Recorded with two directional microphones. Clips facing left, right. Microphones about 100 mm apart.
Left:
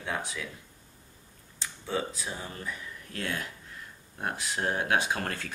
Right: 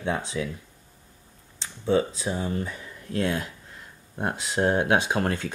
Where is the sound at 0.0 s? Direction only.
25° right (ahead or behind).